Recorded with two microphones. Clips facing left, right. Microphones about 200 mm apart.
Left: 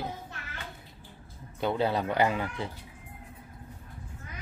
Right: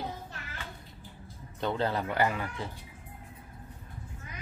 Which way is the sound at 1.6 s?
10° left (ahead or behind).